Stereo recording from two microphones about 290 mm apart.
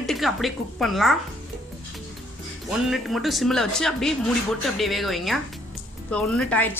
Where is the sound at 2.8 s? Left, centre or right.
Centre.